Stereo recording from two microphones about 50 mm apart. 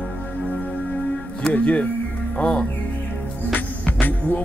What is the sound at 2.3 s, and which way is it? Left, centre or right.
Speech, centre.